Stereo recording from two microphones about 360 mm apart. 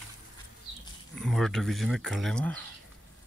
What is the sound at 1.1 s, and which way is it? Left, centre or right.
Speech, centre.